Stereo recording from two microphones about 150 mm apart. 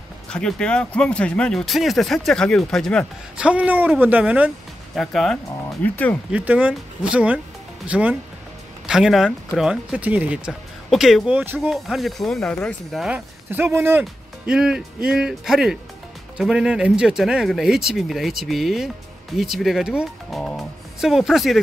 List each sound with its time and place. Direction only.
0.3 s speech: 5° left (ahead or behind)
3.3 s speech: 10° right (ahead or behind)
4.9 s speech: centre (ahead or behind)
6.3 s speech: 10° right (ahead or behind)
11.7 s speech: centre (ahead or behind)
13.5 s speech: 15° right (ahead or behind)
14.5 s speech: 5° right (ahead or behind)